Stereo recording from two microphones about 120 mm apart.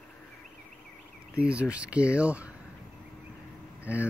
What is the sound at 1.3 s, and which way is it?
Speech, 10° right (ahead or behind).